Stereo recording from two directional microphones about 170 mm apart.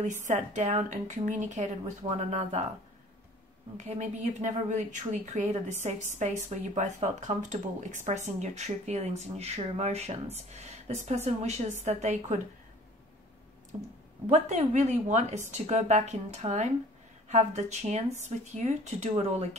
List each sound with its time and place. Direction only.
0.0 s speech: 45° right (ahead or behind)
2.0 s speech: 30° right (ahead or behind)
3.7 s speech: 45° right (ahead or behind)
13.7 s speech: 35° right (ahead or behind)